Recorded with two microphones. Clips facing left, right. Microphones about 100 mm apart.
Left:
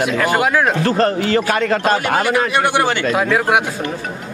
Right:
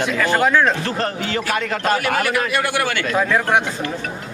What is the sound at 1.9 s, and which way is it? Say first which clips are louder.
A man's voice: right 1 dB; 25° left (ahead or behind).